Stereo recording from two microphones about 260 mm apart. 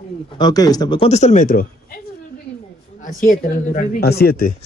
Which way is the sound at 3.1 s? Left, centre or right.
Left.